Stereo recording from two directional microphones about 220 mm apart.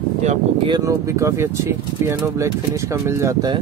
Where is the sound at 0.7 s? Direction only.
15° right (ahead or behind).